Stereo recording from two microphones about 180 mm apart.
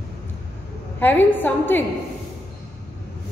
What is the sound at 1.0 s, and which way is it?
Speech, 10° left (ahead or behind).